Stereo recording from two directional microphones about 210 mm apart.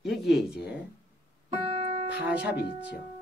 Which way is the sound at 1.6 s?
30° right (ahead or behind).